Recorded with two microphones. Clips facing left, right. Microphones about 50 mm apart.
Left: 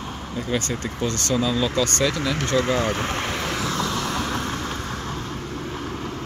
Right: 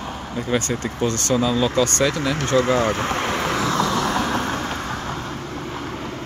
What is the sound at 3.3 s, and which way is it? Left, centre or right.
Vehicle, right.